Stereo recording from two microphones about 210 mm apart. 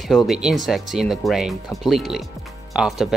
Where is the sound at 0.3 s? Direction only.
Centre (ahead or behind).